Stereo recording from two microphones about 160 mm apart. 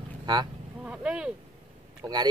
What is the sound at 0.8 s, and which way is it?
Boat, 5° right (ahead or behind).